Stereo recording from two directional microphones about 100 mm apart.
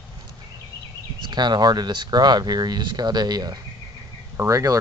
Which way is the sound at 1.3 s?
45° right (ahead or behind).